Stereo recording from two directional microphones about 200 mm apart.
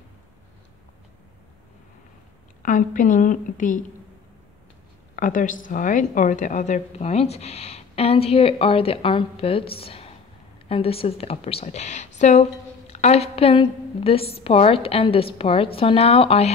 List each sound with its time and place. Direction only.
2.6 s a woman's voice: 40° left (ahead or behind)
5.1 s a woman's voice: 40° left (ahead or behind)